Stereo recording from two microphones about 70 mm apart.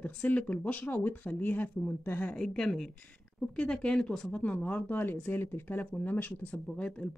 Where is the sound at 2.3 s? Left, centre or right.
Centre.